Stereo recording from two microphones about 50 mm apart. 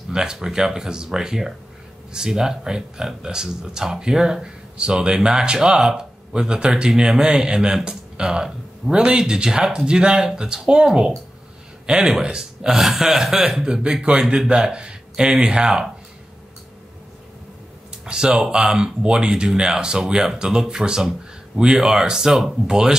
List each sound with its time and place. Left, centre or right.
0.1 s speech: centre
14.2 s speech: centre
14.5 s speech: right
18.0 s speech: centre